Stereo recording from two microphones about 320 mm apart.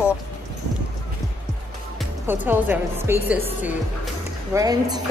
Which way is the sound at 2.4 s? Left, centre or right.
Centre.